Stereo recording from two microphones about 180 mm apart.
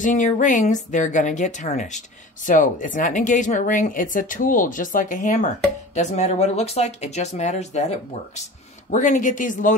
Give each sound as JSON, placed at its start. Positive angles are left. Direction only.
{"t": 0.0, "sound": "speech", "side_deg": 45}
{"t": 8.9, "sound": "speech", "side_deg": 45}